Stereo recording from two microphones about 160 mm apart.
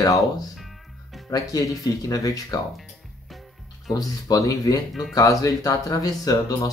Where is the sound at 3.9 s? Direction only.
20° left (ahead or behind).